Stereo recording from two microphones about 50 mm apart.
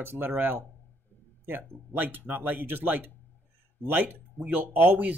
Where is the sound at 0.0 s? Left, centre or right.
Right.